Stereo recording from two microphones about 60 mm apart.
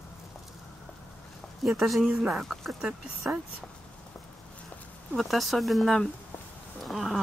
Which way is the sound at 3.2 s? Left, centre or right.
Right.